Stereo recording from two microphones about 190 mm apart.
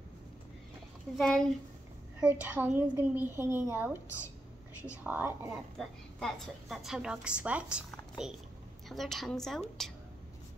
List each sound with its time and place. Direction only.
1.1 s a woman's voice: centre (ahead or behind)
2.1 s a woman's voice: 10° right (ahead or behind)
5.8 s a woman's voice: centre (ahead or behind)